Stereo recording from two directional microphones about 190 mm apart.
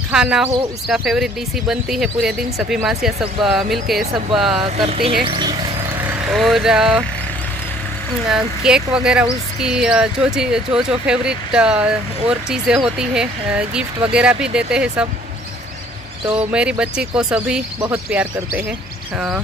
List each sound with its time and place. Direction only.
0.1 s speech: 5° right (ahead or behind)
4.8 s speech: 30° right (ahead or behind)
5.9 s speech: centre (ahead or behind)
8.3 s speech: 5° right (ahead or behind)
16.3 s speech: 5° right (ahead or behind)